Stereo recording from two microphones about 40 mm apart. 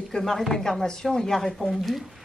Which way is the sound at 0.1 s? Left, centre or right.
Centre.